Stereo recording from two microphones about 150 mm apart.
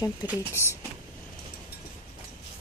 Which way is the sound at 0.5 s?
15° left (ahead or behind).